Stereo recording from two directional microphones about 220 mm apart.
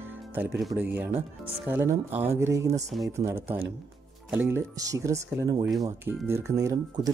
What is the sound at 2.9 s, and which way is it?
Speech, centre (ahead or behind).